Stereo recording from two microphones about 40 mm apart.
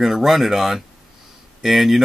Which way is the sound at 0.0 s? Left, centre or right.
Centre.